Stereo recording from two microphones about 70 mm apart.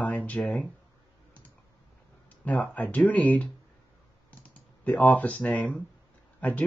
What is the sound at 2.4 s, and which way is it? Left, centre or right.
Speech, left.